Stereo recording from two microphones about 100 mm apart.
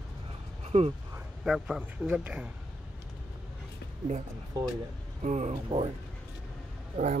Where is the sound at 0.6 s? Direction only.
90° right.